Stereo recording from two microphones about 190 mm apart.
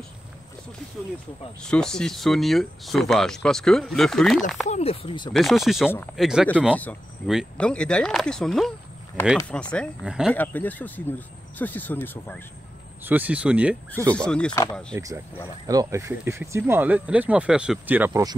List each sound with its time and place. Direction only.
1.6 s speech: 5° left (ahead or behind)
4.6 s speech: 35° left (ahead or behind)
5.3 s speech: centre (ahead or behind)
10.3 s speech: 10° left (ahead or behind)
13.0 s speech: 10° right (ahead or behind)
14.1 s speech: 5° left (ahead or behind)
14.5 s speech: 20° left (ahead or behind)
15.6 s speech: 20° right (ahead or behind)